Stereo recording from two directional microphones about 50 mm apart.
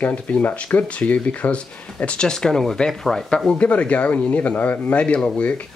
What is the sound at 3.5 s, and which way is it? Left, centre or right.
Speech, left.